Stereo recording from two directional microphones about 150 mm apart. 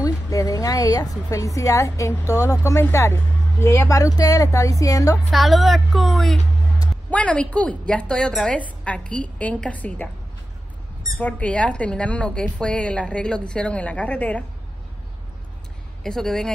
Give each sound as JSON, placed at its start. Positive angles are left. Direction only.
{"t": 0.0, "sound": "a woman's voice", "side_deg": 20}
{"t": 5.3, "sound": "a woman's voice", "side_deg": 0}
{"t": 11.1, "sound": "speech", "side_deg": 10}
{"t": 16.0, "sound": "a woman's voice", "side_deg": 5}